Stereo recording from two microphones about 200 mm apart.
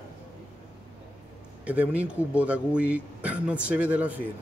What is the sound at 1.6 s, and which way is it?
A man's voice, 5° right (ahead or behind).